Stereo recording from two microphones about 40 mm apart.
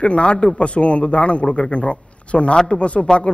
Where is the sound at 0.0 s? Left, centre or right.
Left.